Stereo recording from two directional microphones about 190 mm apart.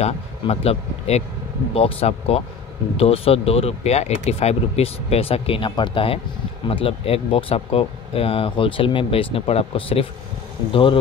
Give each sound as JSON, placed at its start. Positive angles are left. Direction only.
{"t": 0.0, "sound": "speech", "side_deg": 35}